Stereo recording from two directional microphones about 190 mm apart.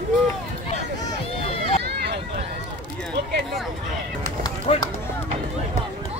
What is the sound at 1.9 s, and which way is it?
Run, 60° right (ahead or behind).